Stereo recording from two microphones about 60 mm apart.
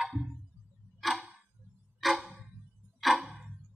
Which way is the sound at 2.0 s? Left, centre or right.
Centre.